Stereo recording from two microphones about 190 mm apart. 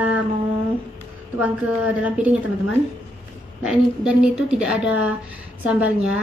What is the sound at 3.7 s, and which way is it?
A woman's voice, 5° right (ahead or behind).